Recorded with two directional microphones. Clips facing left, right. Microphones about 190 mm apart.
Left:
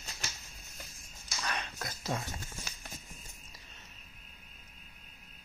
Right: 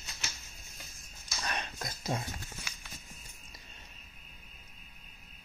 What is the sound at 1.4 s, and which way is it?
Dog, 25° right (ahead or behind).